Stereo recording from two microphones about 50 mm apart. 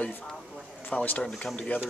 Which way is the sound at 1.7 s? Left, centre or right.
Left.